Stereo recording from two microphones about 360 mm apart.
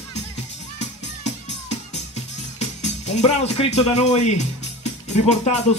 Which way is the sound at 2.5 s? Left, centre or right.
Centre.